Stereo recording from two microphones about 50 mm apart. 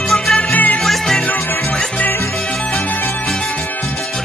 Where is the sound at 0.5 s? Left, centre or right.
Left.